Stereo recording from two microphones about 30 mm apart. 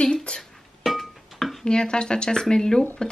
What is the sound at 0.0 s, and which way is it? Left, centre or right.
Music, left.